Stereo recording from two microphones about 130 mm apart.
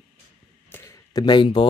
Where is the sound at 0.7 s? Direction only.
20° left (ahead or behind); by 1.6 s 40° left (ahead or behind).